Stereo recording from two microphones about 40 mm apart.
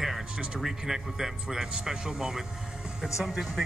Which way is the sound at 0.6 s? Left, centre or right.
Centre.